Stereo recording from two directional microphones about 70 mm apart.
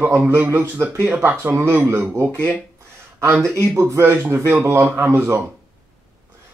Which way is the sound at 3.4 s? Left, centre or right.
Right.